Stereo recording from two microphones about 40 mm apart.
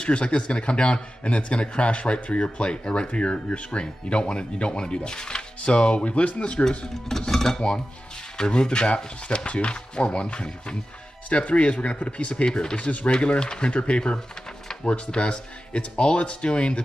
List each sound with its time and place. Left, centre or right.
0.0 s a man's voice: left
7.1 s a man's voice: centre; by 16.8 s left